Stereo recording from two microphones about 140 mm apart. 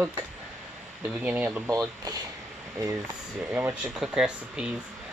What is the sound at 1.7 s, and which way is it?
Speech, 25° right (ahead or behind).